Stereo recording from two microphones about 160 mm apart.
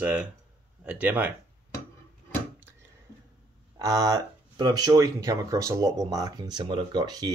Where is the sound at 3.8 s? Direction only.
20° right (ahead or behind).